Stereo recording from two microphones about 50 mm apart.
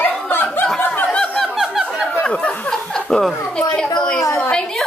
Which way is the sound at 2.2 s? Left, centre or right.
Left.